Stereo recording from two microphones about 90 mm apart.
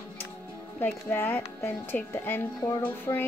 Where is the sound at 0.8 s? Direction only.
20° left (ahead or behind).